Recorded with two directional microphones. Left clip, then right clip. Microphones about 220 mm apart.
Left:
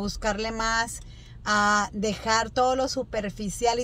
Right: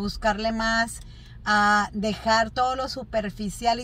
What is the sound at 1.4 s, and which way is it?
Speech, 15° left (ahead or behind).